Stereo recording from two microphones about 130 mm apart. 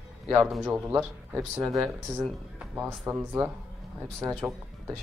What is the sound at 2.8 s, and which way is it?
Speech, 15° right (ahead or behind).